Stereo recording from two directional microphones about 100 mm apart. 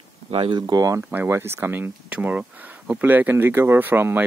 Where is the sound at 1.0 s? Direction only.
15° right (ahead or behind).